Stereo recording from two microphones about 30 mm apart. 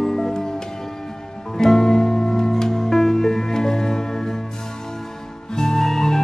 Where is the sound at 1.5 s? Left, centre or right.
Centre.